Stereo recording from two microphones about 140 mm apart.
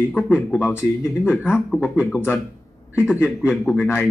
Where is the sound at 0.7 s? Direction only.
15° left (ahead or behind).